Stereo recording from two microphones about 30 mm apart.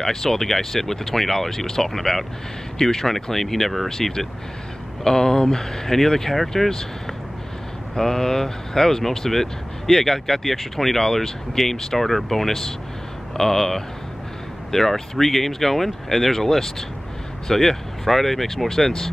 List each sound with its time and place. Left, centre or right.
0.0 s speech: centre
5.0 s speech: centre